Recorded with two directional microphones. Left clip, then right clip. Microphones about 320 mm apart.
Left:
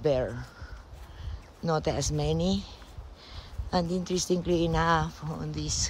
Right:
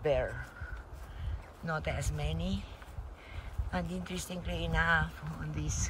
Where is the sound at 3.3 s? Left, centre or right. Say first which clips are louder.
Left 9 dB; centre.